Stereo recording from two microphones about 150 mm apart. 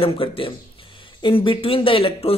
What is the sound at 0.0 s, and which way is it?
Speech, 35° left (ahead or behind).